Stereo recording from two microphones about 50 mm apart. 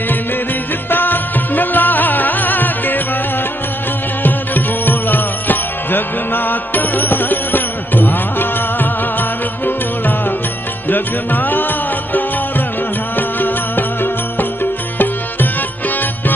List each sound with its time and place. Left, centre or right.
0.8 s music: left
4.2 s music: left